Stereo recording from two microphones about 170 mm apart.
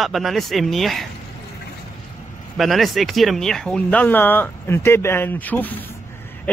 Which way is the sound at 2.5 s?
Centre (ahead or behind).